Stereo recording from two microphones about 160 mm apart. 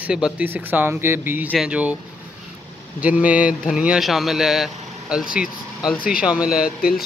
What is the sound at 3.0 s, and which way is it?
Speech, 10° right (ahead or behind).